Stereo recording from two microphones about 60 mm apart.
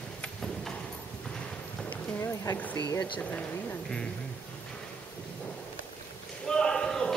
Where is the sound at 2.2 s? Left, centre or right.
Left.